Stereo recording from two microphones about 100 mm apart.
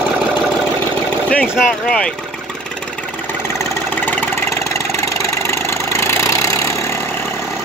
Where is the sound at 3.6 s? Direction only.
20° left (ahead or behind).